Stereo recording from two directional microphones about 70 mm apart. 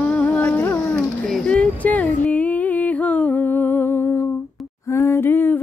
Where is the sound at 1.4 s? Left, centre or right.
Left.